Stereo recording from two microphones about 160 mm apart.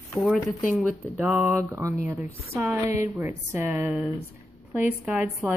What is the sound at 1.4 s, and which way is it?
A woman's voice, 15° right (ahead or behind).